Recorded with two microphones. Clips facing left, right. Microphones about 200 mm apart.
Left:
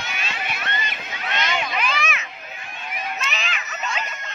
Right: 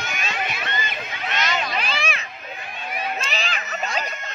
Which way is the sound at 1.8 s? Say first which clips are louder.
Left 1 dB; 30° right (ahead or behind).